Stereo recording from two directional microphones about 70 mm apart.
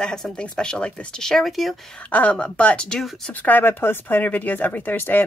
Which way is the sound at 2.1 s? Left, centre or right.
Left.